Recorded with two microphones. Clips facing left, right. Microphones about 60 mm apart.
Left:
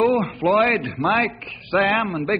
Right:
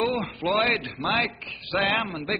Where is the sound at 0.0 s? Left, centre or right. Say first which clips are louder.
Left 7 dB; centre.